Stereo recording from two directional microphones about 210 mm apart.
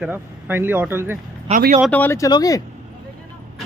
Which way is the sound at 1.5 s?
40° right (ahead or behind).